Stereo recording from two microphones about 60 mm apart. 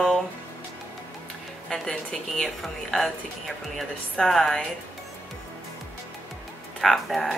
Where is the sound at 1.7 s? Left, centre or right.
Centre.